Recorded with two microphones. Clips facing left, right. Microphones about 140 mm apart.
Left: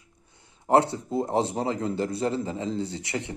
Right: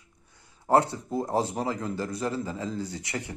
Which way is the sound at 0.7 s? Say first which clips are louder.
Left 2 dB; 25° left (ahead or behind).